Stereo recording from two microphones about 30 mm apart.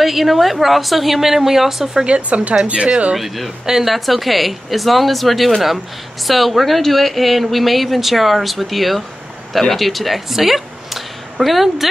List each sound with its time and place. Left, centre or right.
0.0 s speech: centre
2.0 s speech: right
3.2 s speech: centre